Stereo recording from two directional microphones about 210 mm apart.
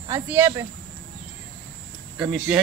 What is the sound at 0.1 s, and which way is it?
Speech, 10° right (ahead or behind).